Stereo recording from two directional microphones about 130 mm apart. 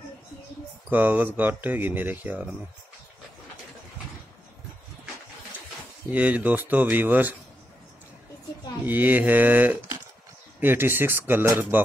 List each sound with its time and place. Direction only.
0.8 s speech: 15° right (ahead or behind)
6.0 s speech: 10° right (ahead or behind)
8.8 s speech: 15° right (ahead or behind)